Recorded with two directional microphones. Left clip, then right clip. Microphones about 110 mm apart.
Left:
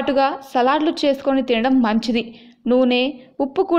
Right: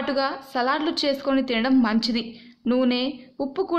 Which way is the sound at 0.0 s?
35° left (ahead or behind).